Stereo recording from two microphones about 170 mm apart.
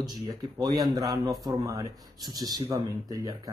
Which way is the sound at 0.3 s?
25° right (ahead or behind).